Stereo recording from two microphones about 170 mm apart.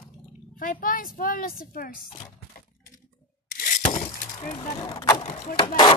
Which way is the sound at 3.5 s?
55° left (ahead or behind).